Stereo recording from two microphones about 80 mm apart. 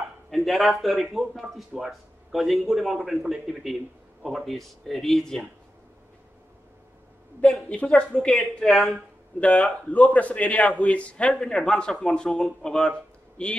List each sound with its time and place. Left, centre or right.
0.3 s a man's voice: centre
7.8 s speech: centre
9.4 s a man's voice: centre
11.2 s a man's voice: centre